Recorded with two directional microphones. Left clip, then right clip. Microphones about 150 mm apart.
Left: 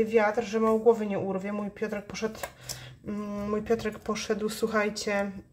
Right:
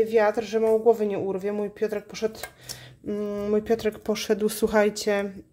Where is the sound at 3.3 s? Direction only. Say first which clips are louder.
Right 4 dB; 45° right (ahead or behind).